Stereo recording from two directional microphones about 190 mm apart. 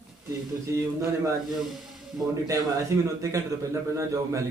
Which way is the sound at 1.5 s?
Centre (ahead or behind).